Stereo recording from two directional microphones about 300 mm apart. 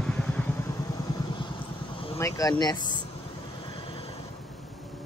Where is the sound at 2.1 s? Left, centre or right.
Centre.